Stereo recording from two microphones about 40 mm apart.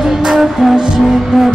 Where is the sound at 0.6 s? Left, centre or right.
Centre.